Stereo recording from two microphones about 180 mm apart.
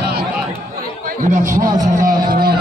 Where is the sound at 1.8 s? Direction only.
45° right (ahead or behind).